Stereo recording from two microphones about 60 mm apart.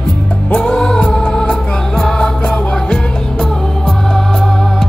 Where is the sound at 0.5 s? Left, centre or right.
Centre.